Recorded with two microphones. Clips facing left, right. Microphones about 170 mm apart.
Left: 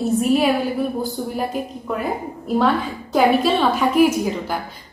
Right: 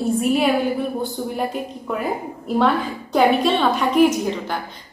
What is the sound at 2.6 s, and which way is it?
A woman's voice, centre (ahead or behind).